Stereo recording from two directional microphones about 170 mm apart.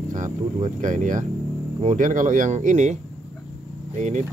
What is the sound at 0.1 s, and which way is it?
Speech, 45° right (ahead or behind).